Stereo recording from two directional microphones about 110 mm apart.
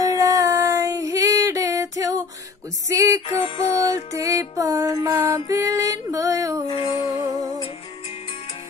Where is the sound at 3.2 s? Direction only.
60° left (ahead or behind).